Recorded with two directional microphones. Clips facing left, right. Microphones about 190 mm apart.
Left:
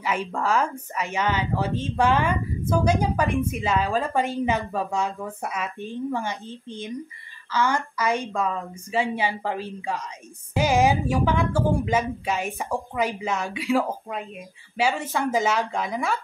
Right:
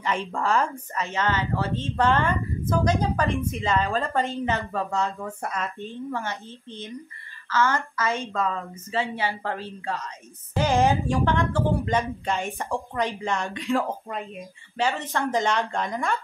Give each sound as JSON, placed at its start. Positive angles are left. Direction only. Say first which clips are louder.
{"t": 0.0, "sound": "speech", "louder": "left 1 dB", "side_deg": 5}
{"t": 1.0, "sound": "a woman's voice", "louder": "left 1 dB", "side_deg": 15}